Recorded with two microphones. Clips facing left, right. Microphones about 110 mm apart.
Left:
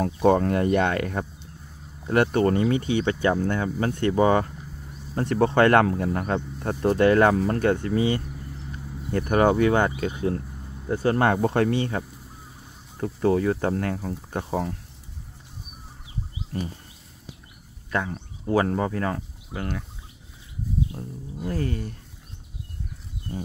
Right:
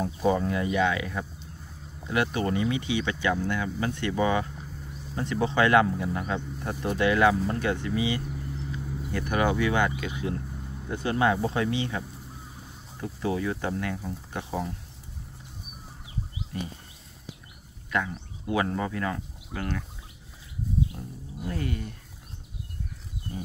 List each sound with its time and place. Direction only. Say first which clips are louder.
0.0 s speech: left 5 dB; 65° left (ahead or behind); by 4.5 s 40° left (ahead or behind)
5.1 s speech: left 5 dB; 55° left (ahead or behind)
13.0 s speech: left 7 dB; 45° left (ahead or behind)
18.1 s speech: left 5 dB; 40° left (ahead or behind)
19.5 s speech: left 1 dB; 20° left (ahead or behind)
21.5 s speech: left 4 dB; 35° left (ahead or behind)